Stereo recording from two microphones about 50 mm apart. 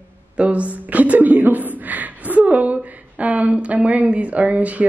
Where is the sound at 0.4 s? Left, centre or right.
Right.